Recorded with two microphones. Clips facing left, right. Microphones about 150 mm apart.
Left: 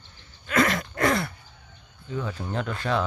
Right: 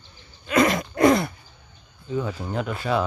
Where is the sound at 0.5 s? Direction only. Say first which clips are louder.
Right 4 dB; 15° right (ahead or behind).